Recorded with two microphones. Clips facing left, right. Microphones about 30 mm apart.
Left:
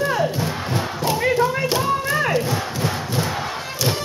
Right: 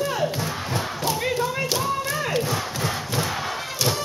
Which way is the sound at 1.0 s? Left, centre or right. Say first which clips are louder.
Left 6 dB; left.